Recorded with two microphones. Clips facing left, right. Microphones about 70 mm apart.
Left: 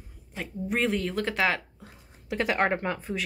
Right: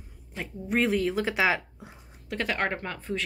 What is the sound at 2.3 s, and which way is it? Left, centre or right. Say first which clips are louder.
Speech: left 3 dB; centre.